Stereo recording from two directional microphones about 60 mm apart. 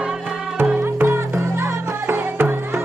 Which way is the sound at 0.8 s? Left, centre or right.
Right.